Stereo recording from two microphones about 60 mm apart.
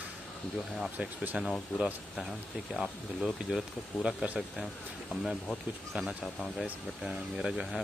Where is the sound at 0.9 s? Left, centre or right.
Right.